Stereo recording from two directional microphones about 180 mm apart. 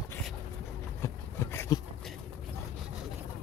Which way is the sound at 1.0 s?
15° left (ahead or behind).